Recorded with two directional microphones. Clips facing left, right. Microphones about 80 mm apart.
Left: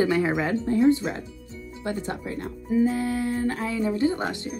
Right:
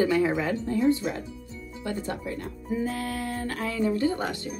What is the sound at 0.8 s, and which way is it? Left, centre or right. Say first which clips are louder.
Speech: left 4 dB; left.